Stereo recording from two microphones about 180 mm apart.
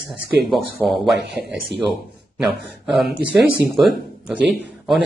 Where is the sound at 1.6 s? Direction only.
Centre (ahead or behind).